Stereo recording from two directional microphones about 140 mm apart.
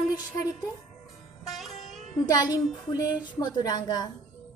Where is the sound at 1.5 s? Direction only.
Centre (ahead or behind).